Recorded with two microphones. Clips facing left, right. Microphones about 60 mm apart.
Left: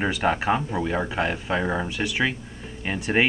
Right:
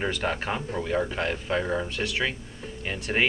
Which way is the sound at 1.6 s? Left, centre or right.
Left.